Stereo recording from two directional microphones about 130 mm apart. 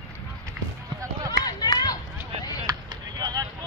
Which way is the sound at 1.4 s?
30° left (ahead or behind).